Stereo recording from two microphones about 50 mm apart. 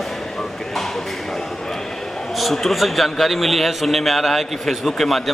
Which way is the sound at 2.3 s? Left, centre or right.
Centre.